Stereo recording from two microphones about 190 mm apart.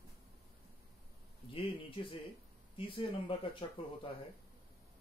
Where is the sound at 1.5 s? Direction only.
30° left (ahead or behind).